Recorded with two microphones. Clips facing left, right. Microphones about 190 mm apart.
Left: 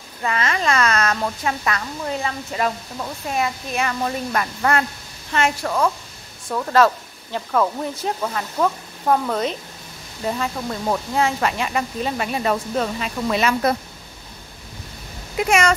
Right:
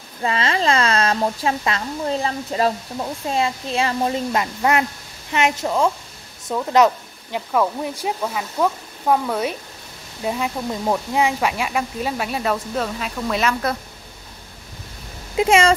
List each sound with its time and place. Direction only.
0.2 s speech: 30° right (ahead or behind); by 13.6 s centre (ahead or behind)
15.3 s speech: 30° right (ahead or behind)